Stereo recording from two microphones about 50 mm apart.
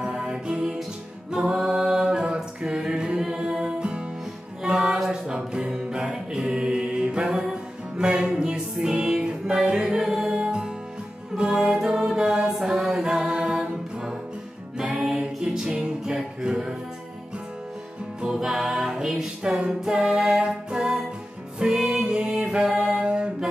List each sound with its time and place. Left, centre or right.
0.0 s music: centre
1.3 s a capella: centre
4.6 s music: centre
11.3 s a capella: centre
13.1 s music: centre
18.2 s music: centre